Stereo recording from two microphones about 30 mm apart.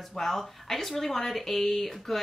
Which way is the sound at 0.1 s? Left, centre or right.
Centre.